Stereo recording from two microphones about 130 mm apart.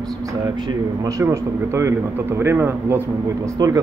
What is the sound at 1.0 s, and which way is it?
Speech, 20° right (ahead or behind).